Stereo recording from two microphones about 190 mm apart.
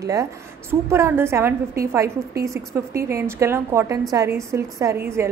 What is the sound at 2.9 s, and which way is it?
A woman's voice, 15° right (ahead or behind).